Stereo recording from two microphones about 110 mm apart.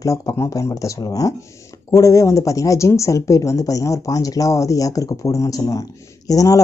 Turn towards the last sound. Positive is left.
turn(degrees=30)  # may be behind; listen again after turning